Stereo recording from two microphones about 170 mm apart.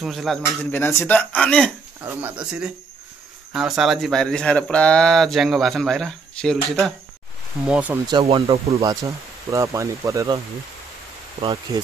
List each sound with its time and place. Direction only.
0.0 s speech: centre (ahead or behind)
0.7 s speech: 15° left (ahead or behind)
2.0 s speech: 10° right (ahead or behind)
8.1 s speech: 30° right (ahead or behind)
8.8 s speech: 20° right (ahead or behind)
11.4 s speech: 30° right (ahead or behind)